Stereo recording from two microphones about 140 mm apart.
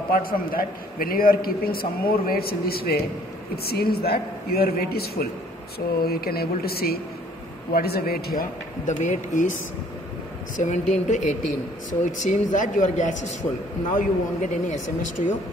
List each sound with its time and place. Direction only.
0.1 s a man's voice: 90° left; by 9.6 s 65° left (ahead or behind)
10.6 s a woman's voice: 60° left (ahead or behind)